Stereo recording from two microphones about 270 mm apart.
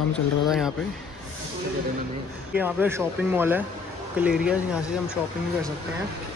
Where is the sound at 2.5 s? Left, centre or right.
Centre.